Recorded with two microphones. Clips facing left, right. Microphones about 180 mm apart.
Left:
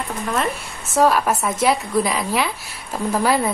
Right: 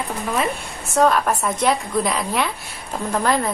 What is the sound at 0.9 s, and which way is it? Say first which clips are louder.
A woman's voice: even; 5° left (ahead or behind).